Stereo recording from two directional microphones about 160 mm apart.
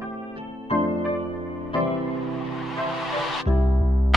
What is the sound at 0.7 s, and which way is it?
Music, 40° left (ahead or behind).